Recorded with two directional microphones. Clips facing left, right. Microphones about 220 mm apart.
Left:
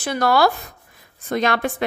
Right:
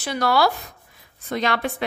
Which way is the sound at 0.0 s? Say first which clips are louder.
Left 3 dB; 50° left (ahead or behind).